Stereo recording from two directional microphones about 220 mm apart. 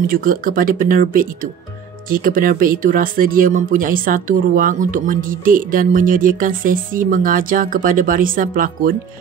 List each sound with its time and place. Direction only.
0.0 s speech: 40° right (ahead or behind)